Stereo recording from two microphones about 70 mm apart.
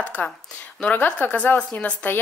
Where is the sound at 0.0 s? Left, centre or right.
Left.